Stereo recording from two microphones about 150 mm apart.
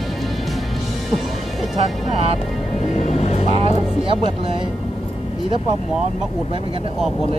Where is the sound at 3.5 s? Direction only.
35° right (ahead or behind).